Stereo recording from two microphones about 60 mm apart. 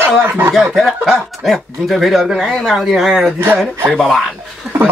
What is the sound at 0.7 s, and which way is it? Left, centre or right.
Speech, centre.